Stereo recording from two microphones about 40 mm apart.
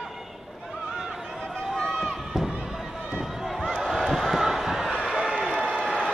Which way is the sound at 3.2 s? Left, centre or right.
Centre.